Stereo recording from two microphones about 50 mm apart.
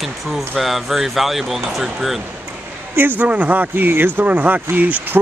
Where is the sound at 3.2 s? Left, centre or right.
Right.